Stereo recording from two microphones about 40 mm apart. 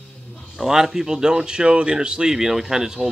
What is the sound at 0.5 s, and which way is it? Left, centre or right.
Speech, centre.